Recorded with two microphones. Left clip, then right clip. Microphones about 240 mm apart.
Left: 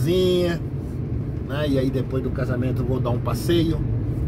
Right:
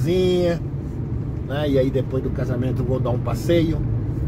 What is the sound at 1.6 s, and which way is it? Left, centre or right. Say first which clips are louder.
Speech: right 3 dB; centre.